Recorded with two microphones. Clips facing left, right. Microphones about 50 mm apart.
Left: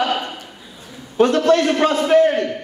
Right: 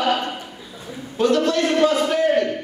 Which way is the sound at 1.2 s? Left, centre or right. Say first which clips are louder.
Left 4 dB; left.